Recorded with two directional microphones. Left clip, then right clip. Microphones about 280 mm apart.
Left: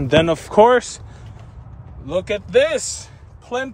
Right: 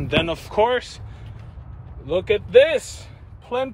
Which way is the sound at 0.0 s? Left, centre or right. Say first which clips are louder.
Left 6 dB; left.